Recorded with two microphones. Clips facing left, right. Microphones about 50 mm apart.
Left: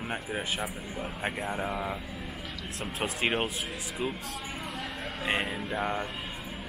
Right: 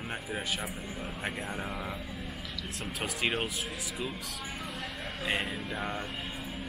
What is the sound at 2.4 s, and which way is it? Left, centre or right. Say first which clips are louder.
Vehicle: left 1 dB; left.